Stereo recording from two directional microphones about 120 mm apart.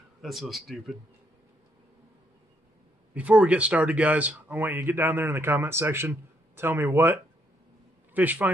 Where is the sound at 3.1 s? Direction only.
10° right (ahead or behind).